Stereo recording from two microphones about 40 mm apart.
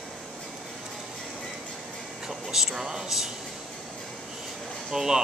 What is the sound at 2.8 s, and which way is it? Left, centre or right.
Speech, centre.